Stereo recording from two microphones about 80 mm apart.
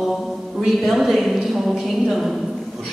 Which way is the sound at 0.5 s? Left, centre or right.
Centre.